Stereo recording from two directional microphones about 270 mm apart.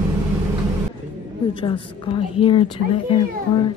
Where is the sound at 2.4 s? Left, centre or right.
Centre.